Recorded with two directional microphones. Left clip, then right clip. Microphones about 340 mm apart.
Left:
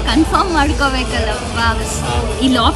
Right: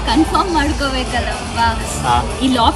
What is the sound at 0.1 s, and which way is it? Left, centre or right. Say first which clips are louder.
Speech: even; centre.